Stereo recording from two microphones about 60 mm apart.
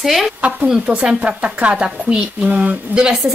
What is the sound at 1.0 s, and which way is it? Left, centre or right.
Speech, right.